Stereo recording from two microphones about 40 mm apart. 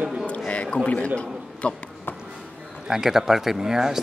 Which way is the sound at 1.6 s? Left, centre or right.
Left.